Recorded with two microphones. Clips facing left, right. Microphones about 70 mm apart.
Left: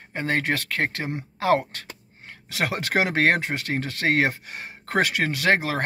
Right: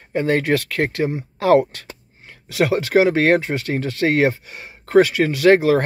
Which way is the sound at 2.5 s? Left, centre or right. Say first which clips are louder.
Right 8 dB; left.